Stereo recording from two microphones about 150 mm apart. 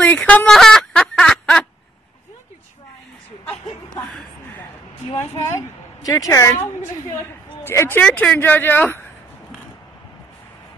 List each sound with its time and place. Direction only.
0.0 s fowl: 10° left (ahead or behind)
4.0 s a sound: centre (ahead or behind)
6.0 s a woman's voice: 25° left (ahead or behind)
7.6 s a woman's voice: 15° left (ahead or behind)